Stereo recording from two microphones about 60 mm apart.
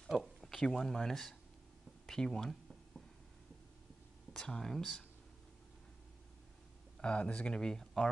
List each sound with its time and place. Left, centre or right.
0.4 s speech: centre
4.3 s speech: centre
7.0 s speech: centre